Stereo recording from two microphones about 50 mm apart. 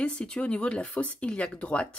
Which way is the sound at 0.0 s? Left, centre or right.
Left.